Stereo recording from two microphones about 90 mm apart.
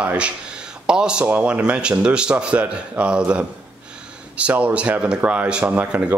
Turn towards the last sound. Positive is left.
turn(degrees=-15)  # may be behind; listen again after turning